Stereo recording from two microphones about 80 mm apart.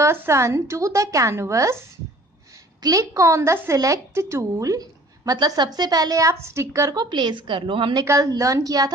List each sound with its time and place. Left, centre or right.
0.0 s a woman's voice: right
2.8 s a woman's voice: right
7.0 s a woman's voice: right
8.0 s a woman's voice: right